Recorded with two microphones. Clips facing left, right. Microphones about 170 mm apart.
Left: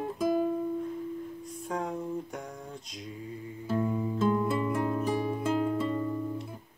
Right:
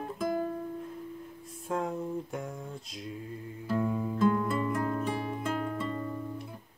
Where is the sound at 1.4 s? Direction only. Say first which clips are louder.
Right 3 dB; centre (ahead or behind).